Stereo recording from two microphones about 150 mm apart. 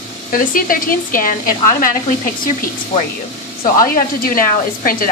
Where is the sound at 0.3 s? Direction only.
70° left (ahead or behind).